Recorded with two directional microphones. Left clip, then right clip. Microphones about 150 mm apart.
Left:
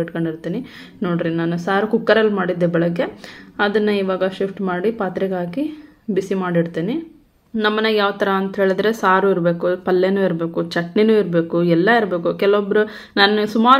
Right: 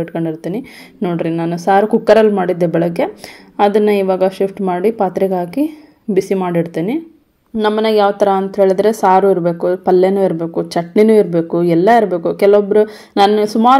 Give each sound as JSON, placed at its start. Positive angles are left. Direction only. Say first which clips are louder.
{"t": 0.1, "sound": "a woman's voice", "louder": "right 4 dB", "side_deg": -45}
{"t": 7.5, "sound": "a woman's voice", "louder": "right 4 dB", "side_deg": -35}